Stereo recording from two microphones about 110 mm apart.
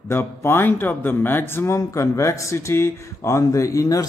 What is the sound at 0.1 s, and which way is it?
Speech, 20° left (ahead or behind).